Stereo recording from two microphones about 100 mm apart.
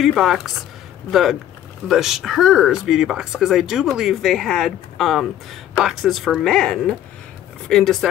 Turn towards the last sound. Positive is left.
turn(degrees=5)  # may be behind; listen again after turning